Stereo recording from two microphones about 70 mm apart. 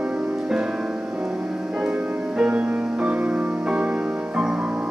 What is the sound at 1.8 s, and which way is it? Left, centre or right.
Music, centre.